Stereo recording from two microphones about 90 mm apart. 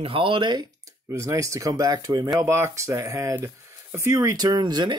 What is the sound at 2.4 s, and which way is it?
Speech, 30° right (ahead or behind).